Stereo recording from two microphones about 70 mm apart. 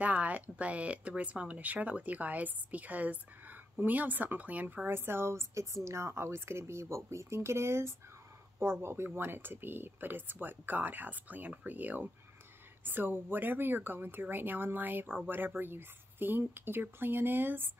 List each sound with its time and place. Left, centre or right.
0.0 s speech: centre
4.8 s speech: right